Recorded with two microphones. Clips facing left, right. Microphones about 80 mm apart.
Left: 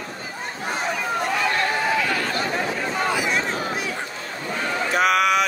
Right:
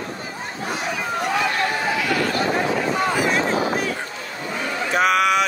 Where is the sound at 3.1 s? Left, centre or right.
Right.